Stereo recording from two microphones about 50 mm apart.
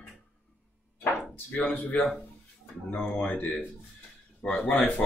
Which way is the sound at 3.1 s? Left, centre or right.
Left.